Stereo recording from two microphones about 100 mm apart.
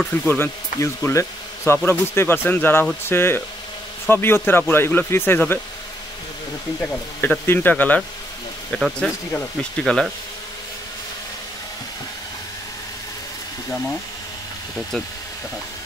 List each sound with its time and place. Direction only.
0.3 s speech: 20° left (ahead or behind)
7.2 s speech: 20° left (ahead or behind)
8.7 s speech: centre (ahead or behind)